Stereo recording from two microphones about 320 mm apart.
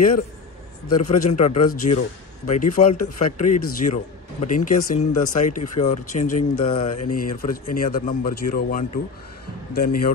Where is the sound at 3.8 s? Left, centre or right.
Left.